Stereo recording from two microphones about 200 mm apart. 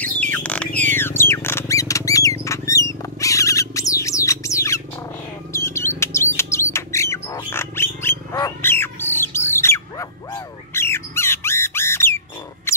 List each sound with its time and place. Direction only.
0.0 s a sound: 5° left (ahead or behind)
0.7 s squawk: 10° left (ahead or behind)
5.7 s bird: 15° left (ahead or behind)
12.7 s mouse: 15° left (ahead or behind)